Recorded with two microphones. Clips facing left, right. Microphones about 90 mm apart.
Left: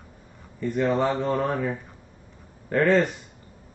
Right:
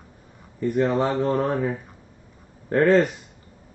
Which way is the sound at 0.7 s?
10° right (ahead or behind).